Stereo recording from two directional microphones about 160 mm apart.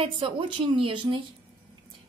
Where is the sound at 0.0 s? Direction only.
35° right (ahead or behind).